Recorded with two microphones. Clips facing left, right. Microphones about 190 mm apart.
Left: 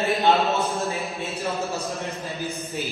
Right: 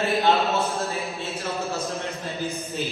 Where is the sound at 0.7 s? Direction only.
15° left (ahead or behind).